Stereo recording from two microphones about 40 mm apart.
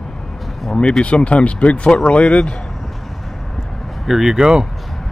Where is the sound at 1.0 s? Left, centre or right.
Left.